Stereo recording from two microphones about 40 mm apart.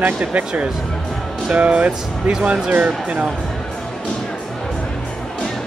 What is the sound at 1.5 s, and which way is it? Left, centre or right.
Speech, right.